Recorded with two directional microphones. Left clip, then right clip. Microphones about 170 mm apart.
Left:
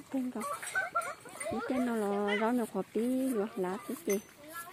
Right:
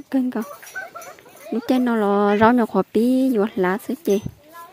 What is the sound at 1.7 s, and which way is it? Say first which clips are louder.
Speech: right 15 dB; 70° right (ahead or behind).